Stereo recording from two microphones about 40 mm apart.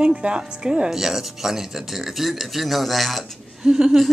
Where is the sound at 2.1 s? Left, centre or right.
Centre.